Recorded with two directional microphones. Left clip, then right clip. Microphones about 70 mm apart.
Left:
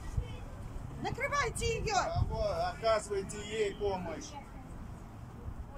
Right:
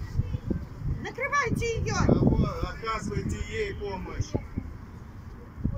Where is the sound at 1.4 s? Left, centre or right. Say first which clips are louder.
Right 5 dB; left.